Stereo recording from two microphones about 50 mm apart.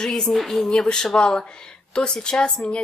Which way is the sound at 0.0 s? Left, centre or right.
Centre.